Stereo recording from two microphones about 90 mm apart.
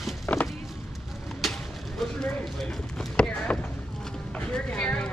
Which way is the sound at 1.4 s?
Centre (ahead or behind).